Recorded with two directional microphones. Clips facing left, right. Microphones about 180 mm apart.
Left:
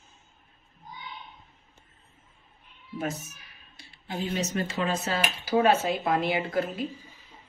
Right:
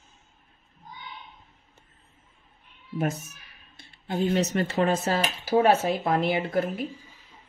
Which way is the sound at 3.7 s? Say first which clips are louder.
Right 5 dB; 55° right (ahead or behind).